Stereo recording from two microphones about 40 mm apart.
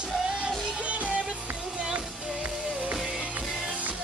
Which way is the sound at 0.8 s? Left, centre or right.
Right.